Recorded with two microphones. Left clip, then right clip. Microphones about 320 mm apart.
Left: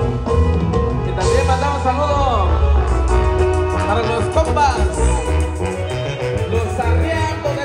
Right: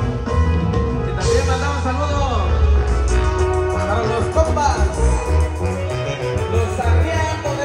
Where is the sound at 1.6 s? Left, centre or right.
Centre.